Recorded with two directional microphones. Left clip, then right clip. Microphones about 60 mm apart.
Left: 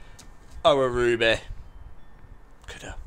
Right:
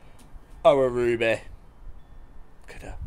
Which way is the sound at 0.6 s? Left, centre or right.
Right.